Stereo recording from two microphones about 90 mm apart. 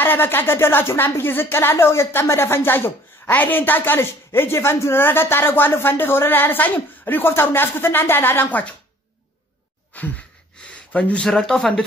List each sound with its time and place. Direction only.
0.0 s a woman's voice: 25° left (ahead or behind)
9.9 s speech: 15° left (ahead or behind)